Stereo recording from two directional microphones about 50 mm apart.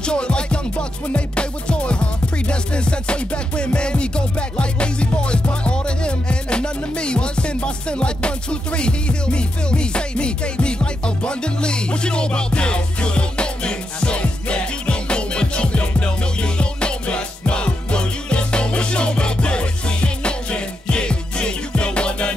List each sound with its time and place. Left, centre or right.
0.0 s music: centre